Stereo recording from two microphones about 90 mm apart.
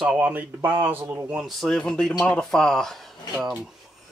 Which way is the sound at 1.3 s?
5° right (ahead or behind).